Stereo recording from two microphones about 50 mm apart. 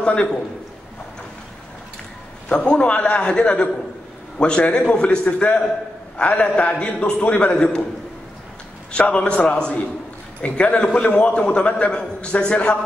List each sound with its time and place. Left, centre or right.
0.0 s a man's voice: left
2.5 s a man's voice: left
8.9 s a man's voice: left